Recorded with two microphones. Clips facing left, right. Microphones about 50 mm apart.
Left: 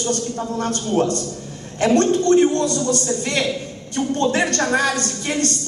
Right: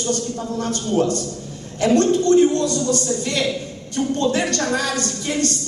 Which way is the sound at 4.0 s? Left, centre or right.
Centre.